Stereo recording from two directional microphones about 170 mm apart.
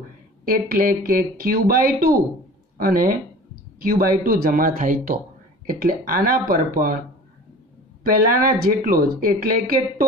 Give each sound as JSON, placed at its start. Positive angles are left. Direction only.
{"t": 0.5, "sound": "speech", "side_deg": -55}
{"t": 8.0, "sound": "speech", "side_deg": -55}